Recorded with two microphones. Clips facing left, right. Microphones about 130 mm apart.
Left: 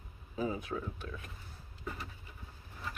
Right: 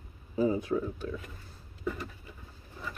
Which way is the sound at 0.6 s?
30° right (ahead or behind).